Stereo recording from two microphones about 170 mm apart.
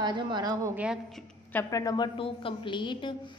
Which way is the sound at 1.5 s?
15° left (ahead or behind).